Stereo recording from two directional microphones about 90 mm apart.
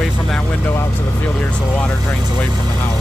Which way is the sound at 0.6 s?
25° left (ahead or behind).